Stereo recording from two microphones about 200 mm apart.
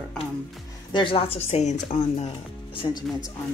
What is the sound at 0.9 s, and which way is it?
Speech, 25° left (ahead or behind).